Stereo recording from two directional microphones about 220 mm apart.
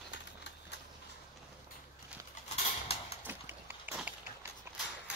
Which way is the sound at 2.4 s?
30° left (ahead or behind).